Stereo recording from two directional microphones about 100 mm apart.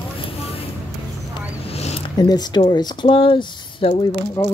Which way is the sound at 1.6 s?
90° left.